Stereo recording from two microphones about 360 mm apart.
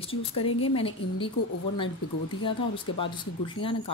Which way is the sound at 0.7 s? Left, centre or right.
Centre.